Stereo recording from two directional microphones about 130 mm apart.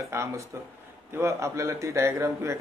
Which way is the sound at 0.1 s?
20° right (ahead or behind).